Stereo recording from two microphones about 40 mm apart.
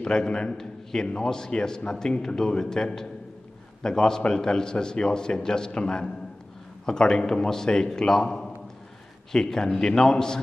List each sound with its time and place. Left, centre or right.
0.0 s a man's voice: left